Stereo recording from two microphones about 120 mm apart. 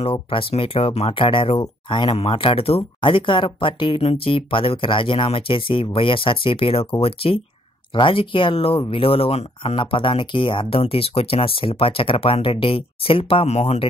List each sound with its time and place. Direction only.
0.0 s speech: 50° left (ahead or behind)
2.1 s speech: 50° left (ahead or behind)